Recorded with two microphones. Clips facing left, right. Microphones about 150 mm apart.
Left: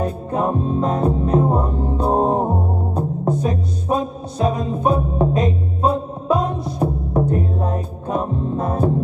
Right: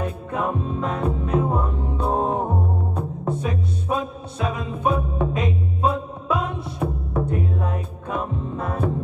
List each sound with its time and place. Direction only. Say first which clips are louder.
0.0 s music: left 5 dB; 35° left (ahead or behind)